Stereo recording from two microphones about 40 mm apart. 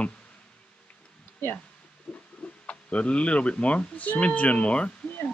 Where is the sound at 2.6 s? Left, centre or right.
Left.